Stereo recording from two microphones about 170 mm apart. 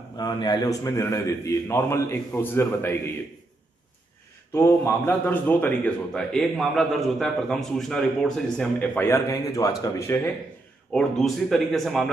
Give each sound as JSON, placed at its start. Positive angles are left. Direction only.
{"t": 0.2, "sound": "a man's voice", "side_deg": 25}
{"t": 4.6, "sound": "a man's voice", "side_deg": 15}
{"t": 10.9, "sound": "speech", "side_deg": 5}